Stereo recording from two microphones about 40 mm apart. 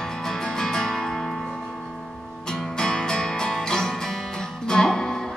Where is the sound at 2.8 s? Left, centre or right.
Centre.